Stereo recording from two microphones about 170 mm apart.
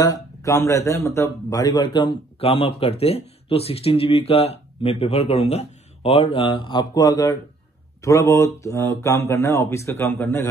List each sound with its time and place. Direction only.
0.0 s a man's voice: 20° left (ahead or behind)